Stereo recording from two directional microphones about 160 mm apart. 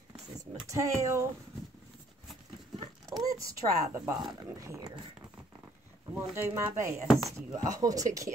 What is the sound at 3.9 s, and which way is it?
Speech, 25° right (ahead or behind).